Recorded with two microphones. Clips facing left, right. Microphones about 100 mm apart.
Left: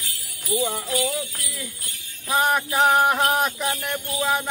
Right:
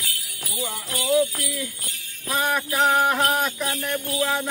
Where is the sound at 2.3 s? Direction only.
20° left (ahead or behind).